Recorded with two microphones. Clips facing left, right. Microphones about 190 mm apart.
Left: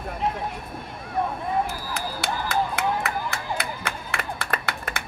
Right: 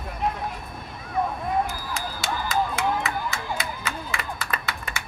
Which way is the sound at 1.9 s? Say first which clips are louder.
Left 2 dB; 60° left (ahead or behind).